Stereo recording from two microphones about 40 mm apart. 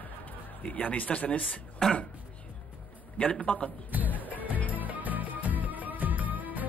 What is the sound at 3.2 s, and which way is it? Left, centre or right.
Speech, left.